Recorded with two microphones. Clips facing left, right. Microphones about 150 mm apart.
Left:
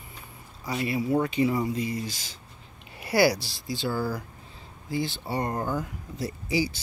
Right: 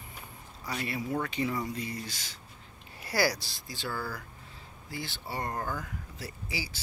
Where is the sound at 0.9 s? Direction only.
20° left (ahead or behind).